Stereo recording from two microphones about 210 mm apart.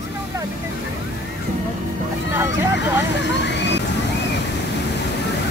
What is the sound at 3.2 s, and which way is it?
Vehicle, 55° left (ahead or behind).